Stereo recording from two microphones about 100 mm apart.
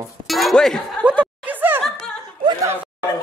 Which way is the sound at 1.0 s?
15° right (ahead or behind).